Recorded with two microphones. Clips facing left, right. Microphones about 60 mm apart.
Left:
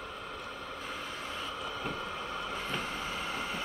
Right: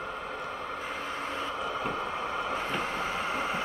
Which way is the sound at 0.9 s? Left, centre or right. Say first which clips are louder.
Right 4 dB; right.